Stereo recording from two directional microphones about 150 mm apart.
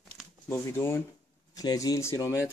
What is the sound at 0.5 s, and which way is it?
Speech, 15° left (ahead or behind).